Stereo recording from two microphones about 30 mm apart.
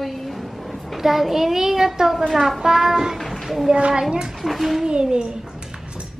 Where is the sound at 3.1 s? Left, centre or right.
Centre.